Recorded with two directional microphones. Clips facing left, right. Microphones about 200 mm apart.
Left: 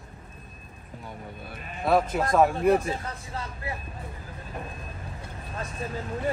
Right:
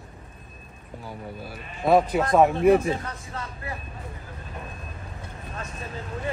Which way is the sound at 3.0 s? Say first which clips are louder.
Even; 30° left (ahead or behind).